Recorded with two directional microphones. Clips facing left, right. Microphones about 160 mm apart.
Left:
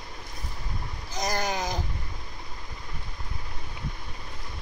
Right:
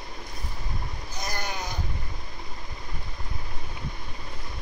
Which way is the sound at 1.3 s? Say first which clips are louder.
Left 5 dB; 90° left.